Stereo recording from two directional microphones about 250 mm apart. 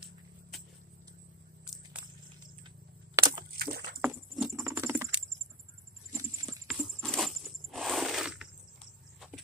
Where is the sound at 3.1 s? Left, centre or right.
Centre.